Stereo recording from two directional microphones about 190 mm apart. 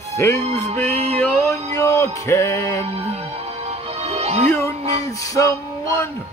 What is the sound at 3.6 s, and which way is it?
Music, 35° right (ahead or behind).